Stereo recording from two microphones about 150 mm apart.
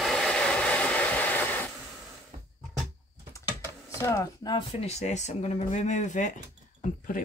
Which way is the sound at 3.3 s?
20° left (ahead or behind).